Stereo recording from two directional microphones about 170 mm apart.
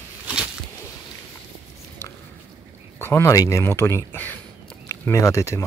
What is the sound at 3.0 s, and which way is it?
Speech, 15° left (ahead or behind).